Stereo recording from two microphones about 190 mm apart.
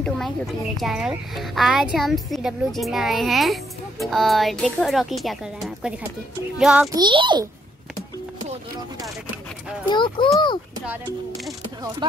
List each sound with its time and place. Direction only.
0.7 s speech: centre (ahead or behind)
6.9 s a child's voice: 25° right (ahead or behind)
9.8 s speech: 25° left (ahead or behind)
12.0 s speech: 25° right (ahead or behind)